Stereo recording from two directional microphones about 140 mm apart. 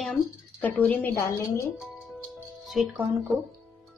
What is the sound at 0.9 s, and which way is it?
Speech, 15° left (ahead or behind).